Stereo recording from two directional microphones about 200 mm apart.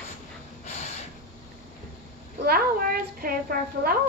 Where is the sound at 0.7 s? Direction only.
35° left (ahead or behind).